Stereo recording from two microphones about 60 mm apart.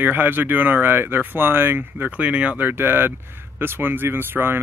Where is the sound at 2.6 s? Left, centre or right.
Right.